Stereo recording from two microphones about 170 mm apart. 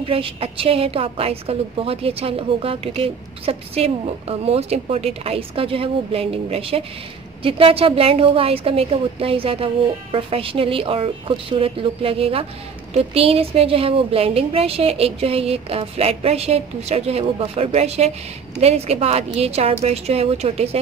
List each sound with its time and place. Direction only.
0.0 s a woman's voice: 30° right (ahead or behind)